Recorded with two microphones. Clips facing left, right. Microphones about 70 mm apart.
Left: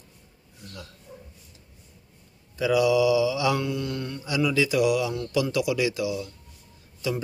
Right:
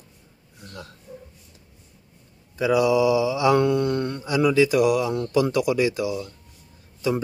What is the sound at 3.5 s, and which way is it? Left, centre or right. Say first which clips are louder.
Mantra: right 8 dB; right.